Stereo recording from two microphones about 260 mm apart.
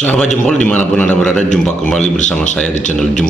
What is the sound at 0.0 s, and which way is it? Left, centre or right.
Speech, centre.